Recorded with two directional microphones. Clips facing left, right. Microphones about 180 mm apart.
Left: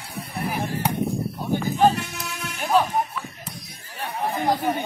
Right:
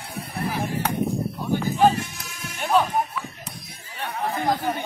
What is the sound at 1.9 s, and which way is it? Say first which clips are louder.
Music: left 1 dB; 65° left (ahead or behind).